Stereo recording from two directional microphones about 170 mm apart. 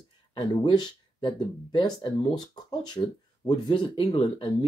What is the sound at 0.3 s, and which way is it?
Speech, 25° left (ahead or behind).